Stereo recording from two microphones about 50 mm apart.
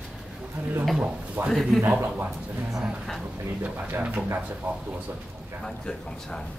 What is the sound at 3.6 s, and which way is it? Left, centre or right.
Speech, right.